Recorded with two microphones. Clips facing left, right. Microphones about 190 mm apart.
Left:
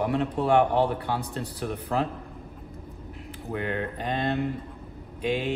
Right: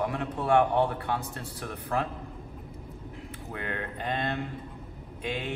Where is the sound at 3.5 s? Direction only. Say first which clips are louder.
Left 6 dB; 25° left (ahead or behind).